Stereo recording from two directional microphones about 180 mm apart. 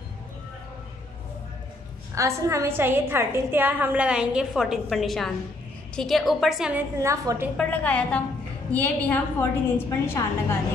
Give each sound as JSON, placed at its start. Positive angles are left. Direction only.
{"t": 2.1, "sound": "a woman's voice", "side_deg": -15}
{"t": 7.0, "sound": "a woman's voice", "side_deg": -15}
{"t": 7.5, "sound": "a woman's voice", "side_deg": 10}